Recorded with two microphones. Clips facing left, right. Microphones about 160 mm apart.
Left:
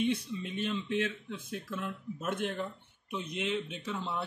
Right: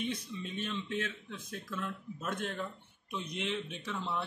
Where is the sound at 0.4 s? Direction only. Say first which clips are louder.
Left 3 dB; 10° left (ahead or behind).